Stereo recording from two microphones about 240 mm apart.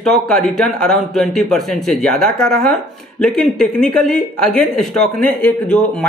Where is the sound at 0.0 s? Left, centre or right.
Centre.